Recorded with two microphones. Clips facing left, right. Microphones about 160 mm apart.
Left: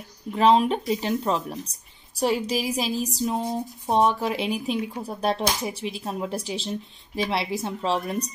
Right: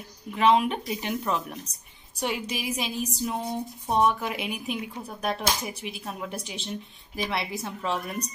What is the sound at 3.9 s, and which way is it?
A woman's voice, 35° left (ahead or behind).